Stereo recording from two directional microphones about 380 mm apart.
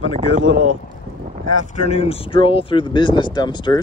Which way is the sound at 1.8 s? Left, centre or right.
Centre.